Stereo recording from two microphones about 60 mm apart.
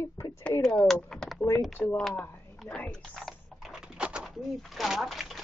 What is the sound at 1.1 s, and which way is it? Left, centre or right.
Speech, centre.